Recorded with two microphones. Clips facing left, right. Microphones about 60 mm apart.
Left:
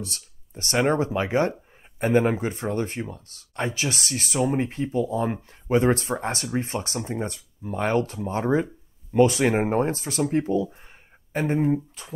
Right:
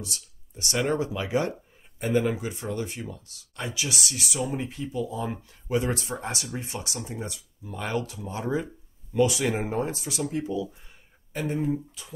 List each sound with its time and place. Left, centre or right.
0.0 s speech: left